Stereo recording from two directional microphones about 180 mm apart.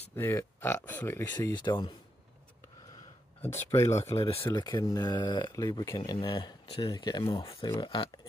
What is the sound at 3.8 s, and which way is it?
Speech, 40° left (ahead or behind).